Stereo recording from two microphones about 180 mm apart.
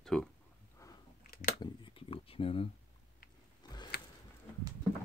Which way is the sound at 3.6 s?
25° left (ahead or behind).